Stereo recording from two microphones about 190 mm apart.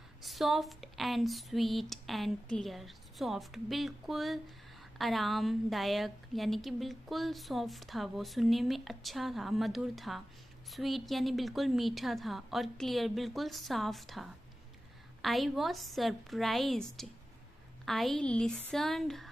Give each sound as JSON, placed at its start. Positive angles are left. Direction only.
{"t": 0.2, "sound": "a woman's voice", "side_deg": 0}